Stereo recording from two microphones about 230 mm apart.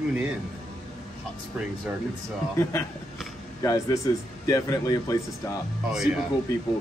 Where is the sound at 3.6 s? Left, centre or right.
Centre.